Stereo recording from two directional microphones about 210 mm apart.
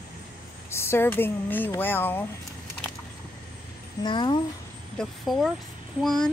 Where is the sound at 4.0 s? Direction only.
20° left (ahead or behind).